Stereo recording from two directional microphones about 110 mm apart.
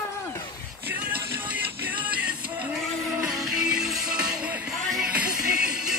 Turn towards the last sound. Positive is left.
turn(degrees=-10)  # may be behind; listen again after turning